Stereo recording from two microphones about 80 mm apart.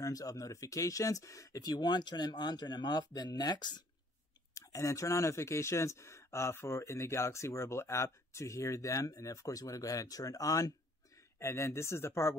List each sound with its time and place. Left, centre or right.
0.0 s speech: left
1.6 s speech: left
4.6 s speech: left